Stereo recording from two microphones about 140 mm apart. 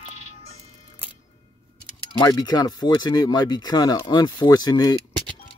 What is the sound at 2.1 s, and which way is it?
Speech, 30° left (ahead or behind).